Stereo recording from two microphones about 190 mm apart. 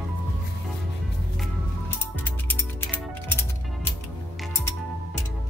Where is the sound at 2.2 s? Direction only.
10° left (ahead or behind).